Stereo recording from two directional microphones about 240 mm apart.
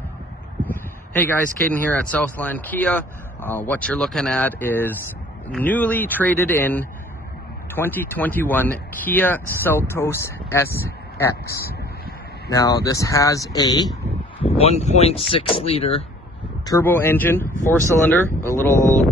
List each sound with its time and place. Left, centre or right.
1.2 s speech: centre
12.4 s speech: centre
16.6 s speech: centre
18.8 s speech: centre